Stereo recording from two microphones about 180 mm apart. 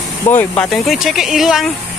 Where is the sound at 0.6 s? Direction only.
Centre (ahead or behind).